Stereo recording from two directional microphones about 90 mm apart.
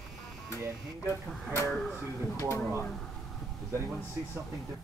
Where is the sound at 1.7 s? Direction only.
5° left (ahead or behind).